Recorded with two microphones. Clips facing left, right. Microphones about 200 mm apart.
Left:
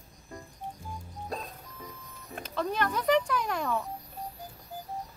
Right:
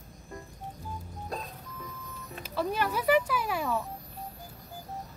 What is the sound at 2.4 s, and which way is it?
Speech, 5° right (ahead or behind).